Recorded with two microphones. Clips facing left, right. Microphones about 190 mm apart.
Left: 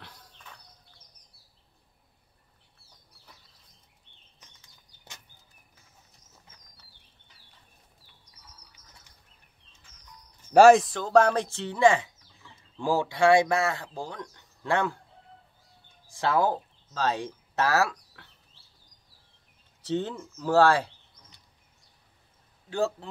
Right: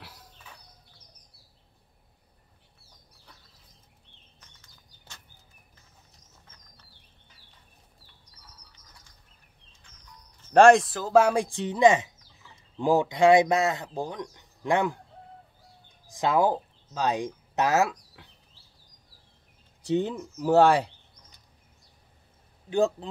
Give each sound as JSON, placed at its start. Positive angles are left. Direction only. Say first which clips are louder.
{"t": 0.0, "sound": "a sound", "louder": "right 1 dB", "side_deg": -5}
{"t": 4.4, "sound": "bird", "louder": "left 1 dB", "side_deg": 15}
{"t": 10.4, "sound": "speech", "louder": "left 1 dB", "side_deg": 5}
{"t": 16.1, "sound": "speech", "louder": "right 2 dB", "side_deg": -15}
{"t": 19.8, "sound": "speech", "louder": "right 3 dB", "side_deg": -15}
{"t": 22.7, "sound": "speech", "louder": "right 4 dB", "side_deg": -15}